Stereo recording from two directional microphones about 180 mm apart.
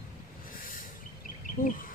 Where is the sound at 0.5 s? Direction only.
50° left (ahead or behind).